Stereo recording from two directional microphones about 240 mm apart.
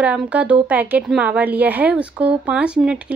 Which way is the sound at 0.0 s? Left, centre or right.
Centre.